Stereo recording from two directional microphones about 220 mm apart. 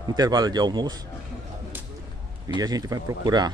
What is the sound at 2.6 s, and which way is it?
Speech, 15° right (ahead or behind).